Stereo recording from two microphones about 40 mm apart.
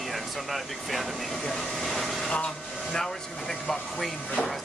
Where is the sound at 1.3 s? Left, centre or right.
Centre.